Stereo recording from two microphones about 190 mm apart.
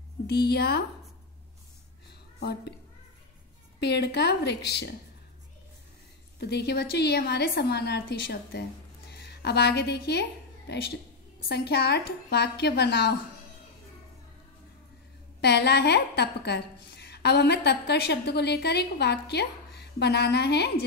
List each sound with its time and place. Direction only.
0.3 s a woman's voice: 60° left (ahead or behind)
3.8 s a woman's voice: 60° left (ahead or behind)
6.4 s a woman's voice: 60° left (ahead or behind)
15.4 s a woman's voice: 60° left (ahead or behind)